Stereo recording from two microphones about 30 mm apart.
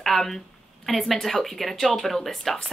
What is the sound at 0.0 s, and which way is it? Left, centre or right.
Speech, centre.